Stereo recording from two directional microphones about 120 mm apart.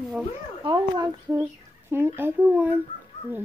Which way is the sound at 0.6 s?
40° right (ahead or behind).